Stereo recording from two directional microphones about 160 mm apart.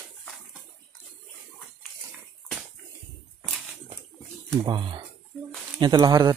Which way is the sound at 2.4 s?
Centre (ahead or behind).